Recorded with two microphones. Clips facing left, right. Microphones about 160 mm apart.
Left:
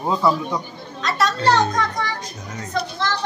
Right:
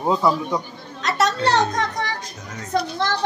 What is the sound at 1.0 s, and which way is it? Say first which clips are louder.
A child's voice: left 1 dB; 70° right (ahead or behind).